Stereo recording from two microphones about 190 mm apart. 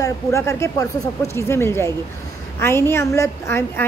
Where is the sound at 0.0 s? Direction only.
15° left (ahead or behind).